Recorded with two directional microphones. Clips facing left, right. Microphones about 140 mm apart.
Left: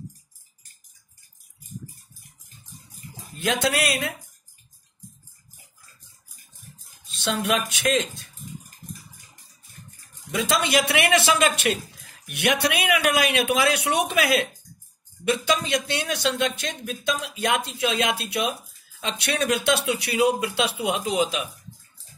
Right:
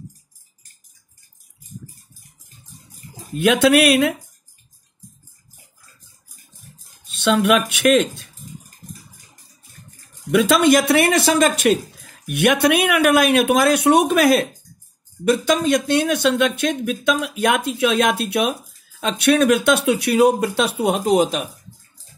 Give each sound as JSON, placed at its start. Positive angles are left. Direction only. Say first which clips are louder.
{"t": 3.3, "sound": "speech", "louder": "right 10 dB", "side_deg": -65}
{"t": 7.2, "sound": "speech", "louder": "right 8 dB", "side_deg": -65}
{"t": 10.3, "sound": "speech", "louder": "right 9 dB", "side_deg": -55}